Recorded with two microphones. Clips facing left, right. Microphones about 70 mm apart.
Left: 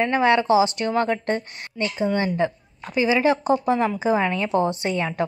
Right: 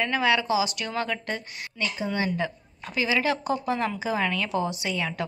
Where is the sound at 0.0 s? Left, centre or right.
Left.